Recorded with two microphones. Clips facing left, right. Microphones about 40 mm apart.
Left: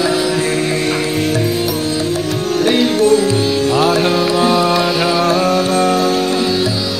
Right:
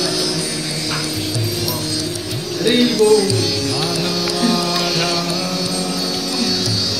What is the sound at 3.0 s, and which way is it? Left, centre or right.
Music, left.